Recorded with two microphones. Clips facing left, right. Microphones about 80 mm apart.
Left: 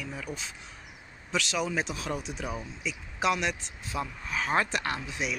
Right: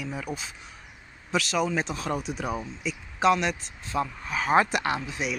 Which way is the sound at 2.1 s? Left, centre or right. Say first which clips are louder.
Right 5 dB; right.